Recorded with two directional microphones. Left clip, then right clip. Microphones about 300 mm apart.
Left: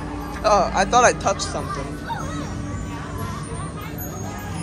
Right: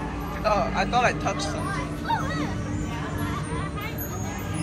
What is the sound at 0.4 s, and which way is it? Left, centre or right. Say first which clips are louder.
Speech: left 6 dB; centre.